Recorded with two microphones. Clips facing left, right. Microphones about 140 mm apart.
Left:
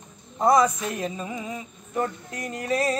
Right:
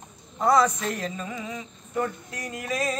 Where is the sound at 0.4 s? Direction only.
20° left (ahead or behind).